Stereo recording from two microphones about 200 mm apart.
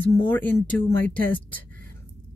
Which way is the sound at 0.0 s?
10° left (ahead or behind).